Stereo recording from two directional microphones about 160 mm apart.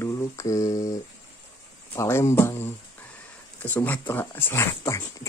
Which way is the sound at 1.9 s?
15° left (ahead or behind).